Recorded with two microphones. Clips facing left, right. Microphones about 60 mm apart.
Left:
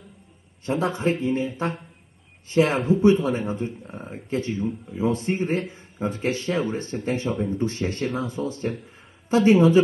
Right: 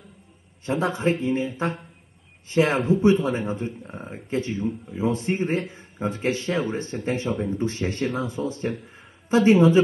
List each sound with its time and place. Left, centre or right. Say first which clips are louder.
0.7 s a man's voice: even; right
2.5 s a man's voice: even; right
7.3 s speech: left 1 dB; centre
7.6 s a man's voice: even; right
8.4 s speech: even; centre
9.3 s a man's voice: even; right